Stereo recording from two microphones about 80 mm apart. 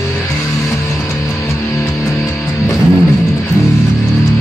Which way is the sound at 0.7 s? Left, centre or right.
Left.